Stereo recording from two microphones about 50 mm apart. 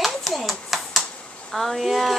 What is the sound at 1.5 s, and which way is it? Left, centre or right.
Speech, centre.